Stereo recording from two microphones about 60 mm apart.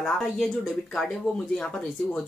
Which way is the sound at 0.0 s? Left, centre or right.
Centre.